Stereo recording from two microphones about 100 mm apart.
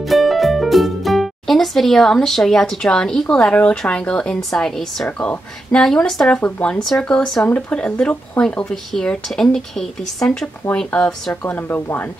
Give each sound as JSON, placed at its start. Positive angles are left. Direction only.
{"t": 0.0, "sound": "speech", "side_deg": 0}
{"t": 5.0, "sound": "speech", "side_deg": 15}
{"t": 11.4, "sound": "speech", "side_deg": 20}